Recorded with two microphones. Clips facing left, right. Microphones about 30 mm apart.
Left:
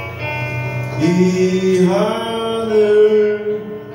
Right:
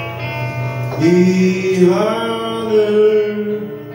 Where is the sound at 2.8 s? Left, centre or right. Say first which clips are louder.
Left 3 dB; centre.